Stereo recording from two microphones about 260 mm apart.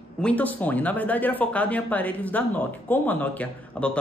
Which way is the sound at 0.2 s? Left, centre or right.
Centre.